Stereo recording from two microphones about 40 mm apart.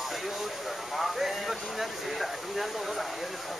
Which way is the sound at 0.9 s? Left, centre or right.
Centre.